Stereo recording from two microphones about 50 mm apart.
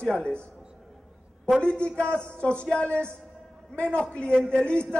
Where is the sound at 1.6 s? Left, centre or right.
Left.